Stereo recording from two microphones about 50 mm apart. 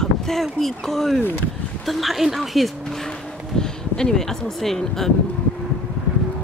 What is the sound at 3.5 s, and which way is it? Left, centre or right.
Speech, centre.